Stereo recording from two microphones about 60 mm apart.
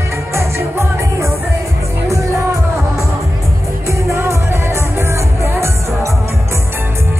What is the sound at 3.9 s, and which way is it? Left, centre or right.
Music, right.